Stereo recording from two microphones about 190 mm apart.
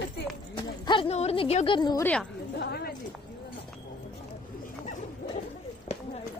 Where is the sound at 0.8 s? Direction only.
25° left (ahead or behind).